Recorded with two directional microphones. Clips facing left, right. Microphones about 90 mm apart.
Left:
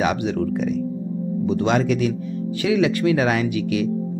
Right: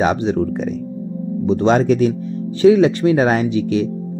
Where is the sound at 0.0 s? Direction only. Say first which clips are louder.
Right 4 dB; 35° right (ahead or behind).